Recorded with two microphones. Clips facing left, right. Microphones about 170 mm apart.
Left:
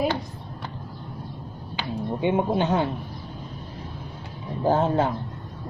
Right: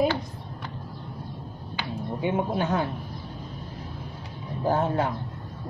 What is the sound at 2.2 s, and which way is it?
Speech, 25° left (ahead or behind).